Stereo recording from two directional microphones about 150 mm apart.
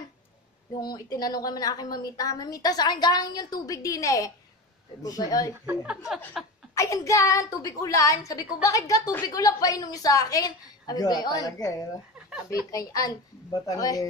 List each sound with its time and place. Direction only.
0.7 s a woman's voice: 25° left (ahead or behind)
5.7 s a woman's voice: 5° right (ahead or behind)
6.7 s a woman's voice: 20° left (ahead or behind)